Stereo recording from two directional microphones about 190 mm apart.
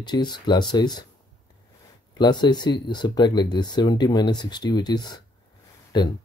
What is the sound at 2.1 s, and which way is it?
Speech, 25° left (ahead or behind).